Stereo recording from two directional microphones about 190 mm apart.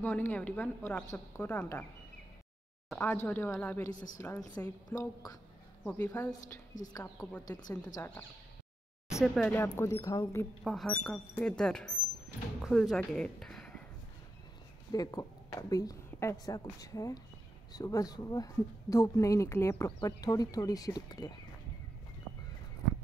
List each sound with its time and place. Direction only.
0.0 s speech: 10° left (ahead or behind)
2.9 s speech: 10° left (ahead or behind)
3.9 s a woman's voice: 40° left (ahead or behind)
4.2 s speech: 15° left (ahead or behind)
5.9 s speech: 10° left (ahead or behind)
9.2 s speech: centre (ahead or behind)
10.6 s speech: centre (ahead or behind)
14.9 s a woman's voice: 20° left (ahead or behind)